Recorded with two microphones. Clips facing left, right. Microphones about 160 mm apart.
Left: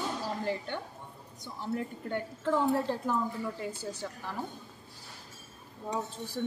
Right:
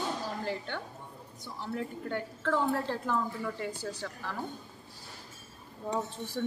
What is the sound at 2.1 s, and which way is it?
Speech, 20° left (ahead or behind).